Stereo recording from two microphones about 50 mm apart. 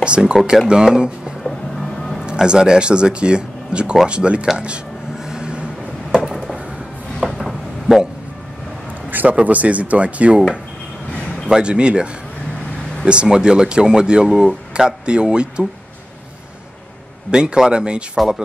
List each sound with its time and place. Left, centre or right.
0.0 s speech: centre
1.4 s music: centre
2.1 s speech: centre
5.3 s a sound: centre
7.2 s a sound: centre
9.1 s speech: right
11.4 s speech: centre
17.3 s speech: centre
18.1 s speech: centre